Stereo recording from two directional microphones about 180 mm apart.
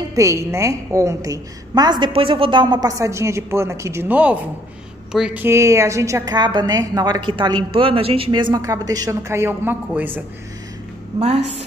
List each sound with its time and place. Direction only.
0.1 s a woman's voice: 15° right (ahead or behind)
11.1 s a woman's voice: 35° right (ahead or behind)